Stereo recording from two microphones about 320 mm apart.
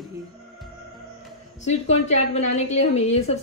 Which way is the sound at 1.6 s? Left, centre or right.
Left.